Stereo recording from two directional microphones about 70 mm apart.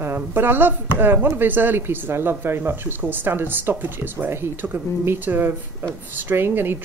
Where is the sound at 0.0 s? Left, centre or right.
Right.